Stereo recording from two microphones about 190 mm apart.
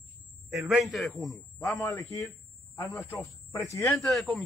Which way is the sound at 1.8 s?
15° left (ahead or behind).